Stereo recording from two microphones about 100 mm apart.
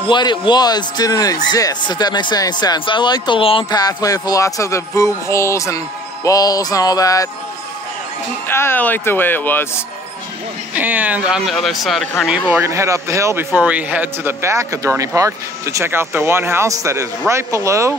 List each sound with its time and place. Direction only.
0.1 s speech: 50° left (ahead or behind)
2.8 s speech: 55° left (ahead or behind)
3.7 s music: 40° left (ahead or behind)
8.5 s speech: 25° left (ahead or behind)
10.7 s a man's voice: 15° right (ahead or behind); by 12.1 s centre (ahead or behind)
12.3 s speech: 15° right (ahead or behind)
12.6 s speech: 30° right (ahead or behind)
13.6 s speech: 15° right (ahead or behind)